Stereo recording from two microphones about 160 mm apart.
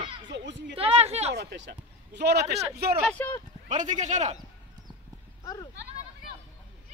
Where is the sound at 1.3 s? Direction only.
90° right.